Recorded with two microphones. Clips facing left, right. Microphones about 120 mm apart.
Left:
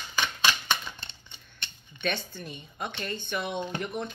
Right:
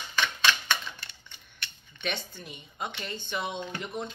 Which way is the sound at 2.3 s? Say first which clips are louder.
Left 3 dB; 15° right (ahead or behind).